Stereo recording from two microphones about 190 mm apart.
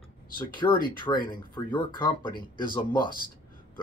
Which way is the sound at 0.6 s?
20° left (ahead or behind).